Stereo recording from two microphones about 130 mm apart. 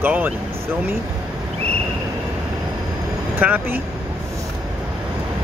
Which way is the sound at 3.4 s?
15° right (ahead or behind).